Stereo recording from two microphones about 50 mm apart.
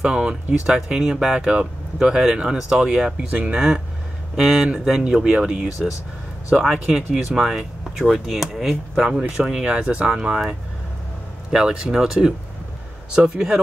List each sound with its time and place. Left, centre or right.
0.0 s speech: centre
3.3 s speech: right
8.1 s speech: centre
11.5 s speech: centre